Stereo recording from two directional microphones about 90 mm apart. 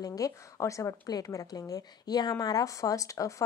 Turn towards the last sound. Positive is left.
turn(degrees=35)  # may be behind; listen again after turning